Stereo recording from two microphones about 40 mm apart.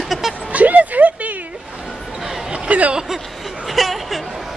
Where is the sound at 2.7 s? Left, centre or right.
Right.